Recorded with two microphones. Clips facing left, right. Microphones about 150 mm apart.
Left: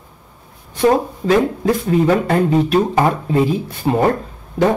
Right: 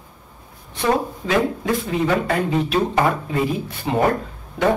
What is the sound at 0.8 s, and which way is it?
Speech, 40° left (ahead or behind).